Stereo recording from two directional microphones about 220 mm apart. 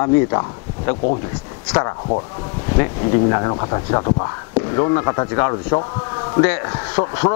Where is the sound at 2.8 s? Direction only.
20° left (ahead or behind).